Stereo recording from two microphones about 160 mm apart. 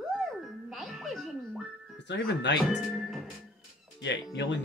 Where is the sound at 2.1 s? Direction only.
90° left.